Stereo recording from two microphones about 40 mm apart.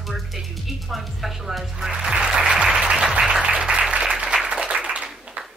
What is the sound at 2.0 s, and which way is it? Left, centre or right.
Applause, centre.